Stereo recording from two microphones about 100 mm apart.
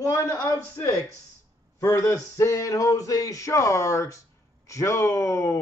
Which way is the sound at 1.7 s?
35° left (ahead or behind).